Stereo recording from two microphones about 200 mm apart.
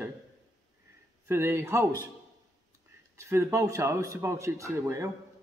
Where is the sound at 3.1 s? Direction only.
15° right (ahead or behind).